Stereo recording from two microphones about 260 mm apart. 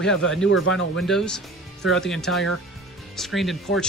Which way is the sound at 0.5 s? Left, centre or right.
Left.